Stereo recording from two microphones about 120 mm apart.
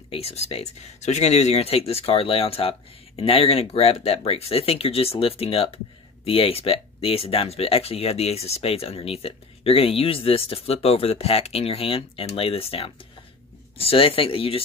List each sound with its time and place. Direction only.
0.1 s speech: 55° left (ahead or behind)